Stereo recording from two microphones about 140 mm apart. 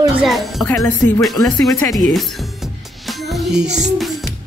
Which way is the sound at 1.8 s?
Centre (ahead or behind).